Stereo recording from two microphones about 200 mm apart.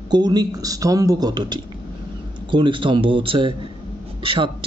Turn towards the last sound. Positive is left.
turn(degrees=-25)  # may be behind; listen again after turning